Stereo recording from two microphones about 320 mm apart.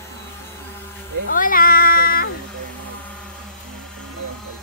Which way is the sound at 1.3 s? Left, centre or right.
Left.